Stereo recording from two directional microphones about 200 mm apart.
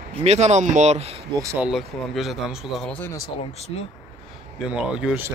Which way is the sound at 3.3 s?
30° left (ahead or behind).